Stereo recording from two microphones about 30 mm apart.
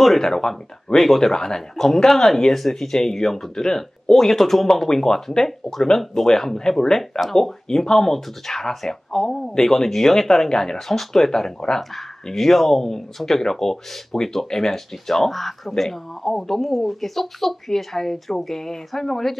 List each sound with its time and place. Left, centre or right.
0.2 s speech: centre
0.9 s speech: centre
1.3 s speech: left
4.8 s speech: centre
7.8 s speech: centre
10.9 s speech: centre